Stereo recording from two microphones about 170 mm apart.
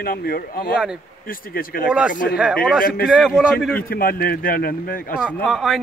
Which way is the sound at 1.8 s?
5° right (ahead or behind).